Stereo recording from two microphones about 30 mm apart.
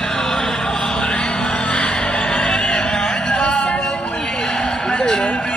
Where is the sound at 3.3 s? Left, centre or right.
Left.